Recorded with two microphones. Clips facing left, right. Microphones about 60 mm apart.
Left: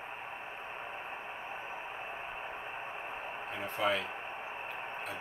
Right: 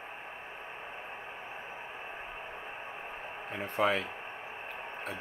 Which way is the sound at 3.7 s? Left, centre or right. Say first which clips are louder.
Right 3 dB; right.